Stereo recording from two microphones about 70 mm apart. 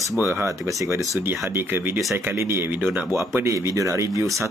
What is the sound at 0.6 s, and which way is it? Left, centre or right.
Speech, right.